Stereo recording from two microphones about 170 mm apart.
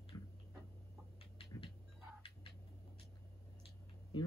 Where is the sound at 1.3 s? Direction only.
30° left (ahead or behind).